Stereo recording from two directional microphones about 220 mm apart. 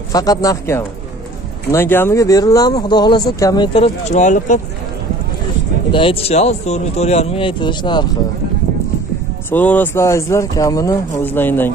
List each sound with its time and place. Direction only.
0.1 s speech: 15° left (ahead or behind); by 4.6 s 35° left (ahead or behind)
5.9 s speech: 25° left (ahead or behind)
9.5 s speech: 10° left (ahead or behind)